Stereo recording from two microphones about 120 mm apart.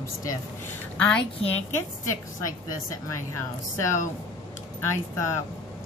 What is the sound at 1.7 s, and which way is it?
A woman's voice, 25° left (ahead or behind).